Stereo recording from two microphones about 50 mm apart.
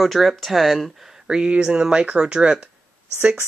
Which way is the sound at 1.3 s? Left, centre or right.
Centre.